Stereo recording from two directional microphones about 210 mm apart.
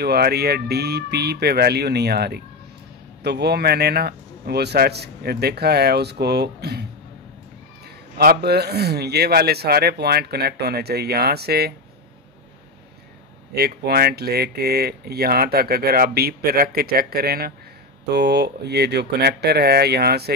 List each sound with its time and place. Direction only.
0.0 s speech: 50° right (ahead or behind)
8.2 s speech: 45° right (ahead or behind)
13.5 s speech: 50° right (ahead or behind)